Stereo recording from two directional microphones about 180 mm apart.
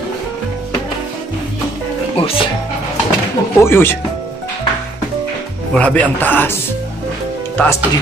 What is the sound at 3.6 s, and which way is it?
Speech, 15° left (ahead or behind).